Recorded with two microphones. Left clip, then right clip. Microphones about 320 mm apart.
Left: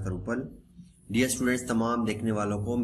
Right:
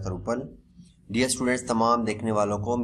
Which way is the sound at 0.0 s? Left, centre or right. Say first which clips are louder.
Right 4 dB; centre.